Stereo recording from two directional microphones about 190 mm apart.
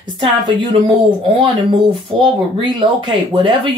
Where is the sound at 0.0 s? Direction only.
25° right (ahead or behind).